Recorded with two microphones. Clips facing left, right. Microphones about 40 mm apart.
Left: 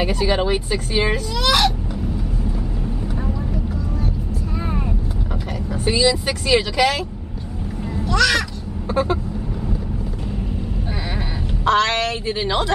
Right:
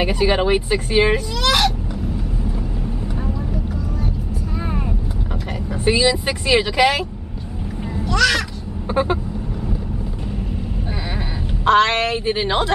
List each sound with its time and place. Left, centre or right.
0.0 s speech: centre
1.4 s vehicle: centre
3.3 s vehicle: centre
5.9 s speech: centre
8.0 s speech: centre
8.8 s vehicle: centre
11.6 s speech: right